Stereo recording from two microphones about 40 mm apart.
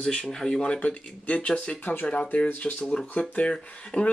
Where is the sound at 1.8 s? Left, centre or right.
Left.